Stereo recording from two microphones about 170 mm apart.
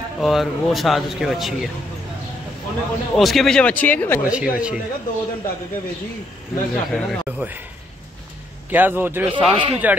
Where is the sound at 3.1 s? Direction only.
Centre (ahead or behind).